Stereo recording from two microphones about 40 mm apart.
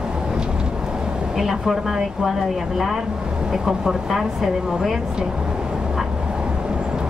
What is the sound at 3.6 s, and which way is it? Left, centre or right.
Speech, centre.